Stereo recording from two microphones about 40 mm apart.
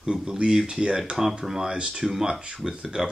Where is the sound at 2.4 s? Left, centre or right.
Right.